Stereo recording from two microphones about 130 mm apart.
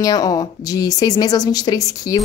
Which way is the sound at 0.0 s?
30° left (ahead or behind).